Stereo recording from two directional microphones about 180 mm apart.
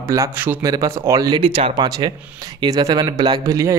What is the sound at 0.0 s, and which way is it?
Speech, 15° right (ahead or behind).